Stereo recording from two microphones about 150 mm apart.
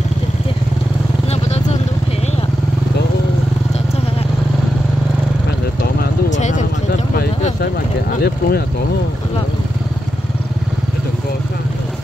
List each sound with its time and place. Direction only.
1.3 s vehicle: 45° left (ahead or behind)
6.3 s vehicle: 55° left (ahead or behind)
8.2 s a sound: 90° left